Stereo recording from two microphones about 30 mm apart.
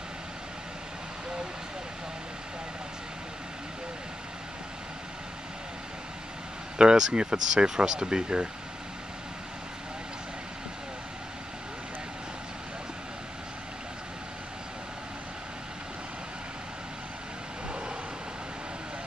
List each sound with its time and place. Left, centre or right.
6.8 s speech: right